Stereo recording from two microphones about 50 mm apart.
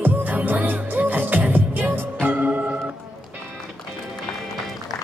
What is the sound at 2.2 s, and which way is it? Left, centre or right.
Organ, right.